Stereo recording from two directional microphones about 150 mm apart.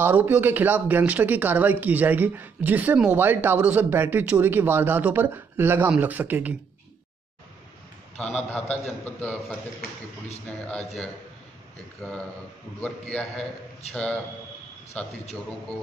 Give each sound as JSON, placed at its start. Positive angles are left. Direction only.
{"t": 0.0, "sound": "speech", "side_deg": -10}
{"t": 8.2, "sound": "a man's voice", "side_deg": 10}
{"t": 9.8, "sound": "a man's voice", "side_deg": 80}
{"t": 12.0, "sound": "a man's voice", "side_deg": 5}